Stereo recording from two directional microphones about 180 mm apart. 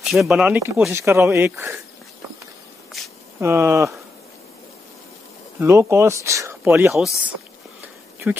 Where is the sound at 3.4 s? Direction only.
15° right (ahead or behind).